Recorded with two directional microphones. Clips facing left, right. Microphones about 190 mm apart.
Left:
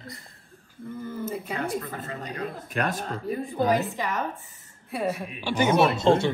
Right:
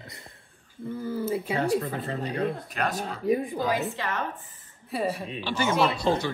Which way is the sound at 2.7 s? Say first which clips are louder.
Left 1 dB; 50° left (ahead or behind).